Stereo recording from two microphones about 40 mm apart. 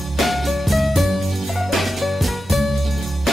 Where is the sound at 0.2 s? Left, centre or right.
Centre.